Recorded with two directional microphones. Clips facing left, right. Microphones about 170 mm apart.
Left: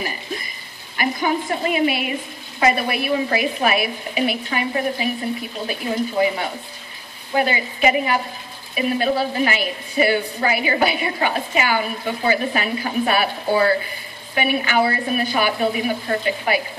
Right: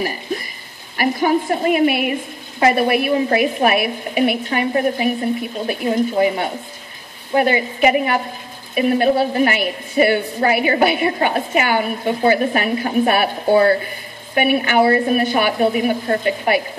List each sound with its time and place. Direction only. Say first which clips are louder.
0.9 s a woman's voice: right 5 dB; 45° right (ahead or behind)
14.3 s a woman's voice: right 4 dB; 50° right (ahead or behind)
14.8 s a woman's voice: right 7 dB; 40° right (ahead or behind)